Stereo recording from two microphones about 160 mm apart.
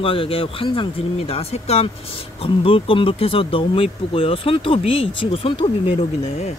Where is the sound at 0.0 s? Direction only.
35° left (ahead or behind).